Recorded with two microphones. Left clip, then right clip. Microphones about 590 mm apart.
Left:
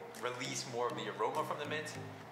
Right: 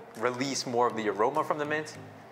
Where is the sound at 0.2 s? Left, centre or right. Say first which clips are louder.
Right 10 dB; right.